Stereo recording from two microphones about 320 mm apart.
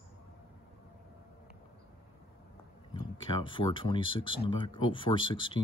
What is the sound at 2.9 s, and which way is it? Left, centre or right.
Speech, centre.